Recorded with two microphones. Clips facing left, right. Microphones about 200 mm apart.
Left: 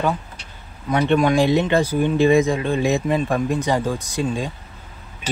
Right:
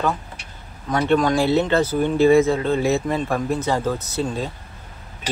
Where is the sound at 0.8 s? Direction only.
15° left (ahead or behind).